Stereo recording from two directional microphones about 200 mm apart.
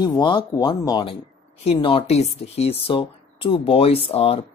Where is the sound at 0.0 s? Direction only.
20° left (ahead or behind).